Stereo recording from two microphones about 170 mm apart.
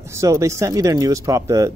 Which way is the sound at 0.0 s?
15° right (ahead or behind).